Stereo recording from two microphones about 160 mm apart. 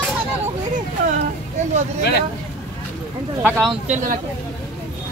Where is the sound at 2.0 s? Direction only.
85° left.